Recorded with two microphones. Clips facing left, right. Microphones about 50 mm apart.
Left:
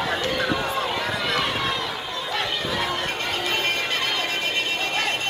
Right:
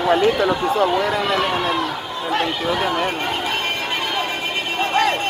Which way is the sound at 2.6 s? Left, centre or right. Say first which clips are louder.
Right 6 dB; centre.